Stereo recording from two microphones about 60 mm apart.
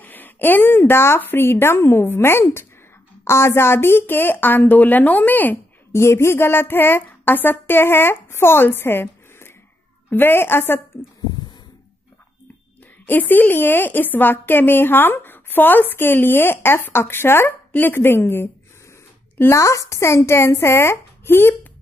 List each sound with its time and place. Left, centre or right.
0.0 s a woman's voice: left
5.9 s a woman's voice: left
13.0 s a woman's voice: left
19.5 s speech: left